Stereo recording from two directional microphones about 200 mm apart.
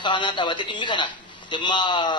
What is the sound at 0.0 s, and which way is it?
A man's voice, 25° left (ahead or behind).